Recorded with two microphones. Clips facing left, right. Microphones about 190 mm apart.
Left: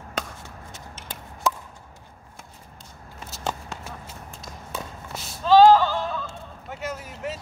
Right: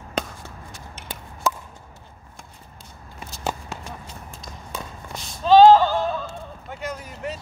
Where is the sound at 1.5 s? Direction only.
Centre (ahead or behind).